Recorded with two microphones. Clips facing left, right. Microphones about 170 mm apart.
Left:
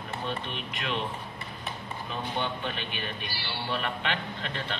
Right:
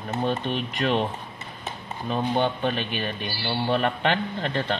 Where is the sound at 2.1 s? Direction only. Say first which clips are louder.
Right 9 dB; 35° right (ahead or behind).